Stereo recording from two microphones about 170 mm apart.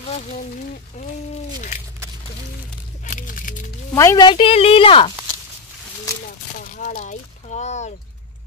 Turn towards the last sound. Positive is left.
turn(degrees=40)  # may be behind; listen again after turning